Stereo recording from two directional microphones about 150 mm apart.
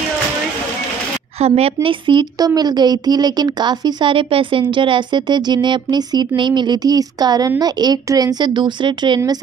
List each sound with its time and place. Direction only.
1.4 s a woman's voice: 40° right (ahead or behind)